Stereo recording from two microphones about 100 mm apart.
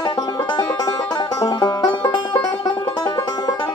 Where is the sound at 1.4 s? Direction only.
45° left (ahead or behind).